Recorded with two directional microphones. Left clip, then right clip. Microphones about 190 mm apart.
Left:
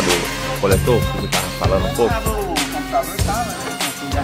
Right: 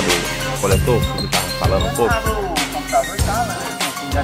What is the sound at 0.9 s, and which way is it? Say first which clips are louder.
Speech: even; centre (ahead or behind).